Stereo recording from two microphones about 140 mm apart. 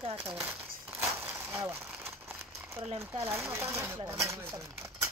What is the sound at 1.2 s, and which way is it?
Vehicle, 15° right (ahead or behind).